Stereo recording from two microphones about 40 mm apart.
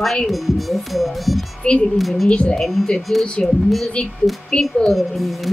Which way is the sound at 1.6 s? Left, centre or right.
Left.